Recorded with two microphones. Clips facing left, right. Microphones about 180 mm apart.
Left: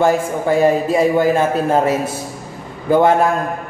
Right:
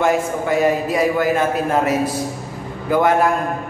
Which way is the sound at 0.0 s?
30° left (ahead or behind).